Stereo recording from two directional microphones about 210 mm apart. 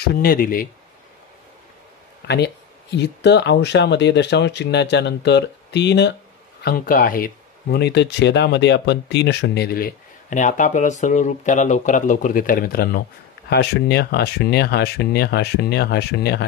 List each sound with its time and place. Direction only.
0.0 s speech: 45° left (ahead or behind)
2.2 s speech: 55° left (ahead or behind)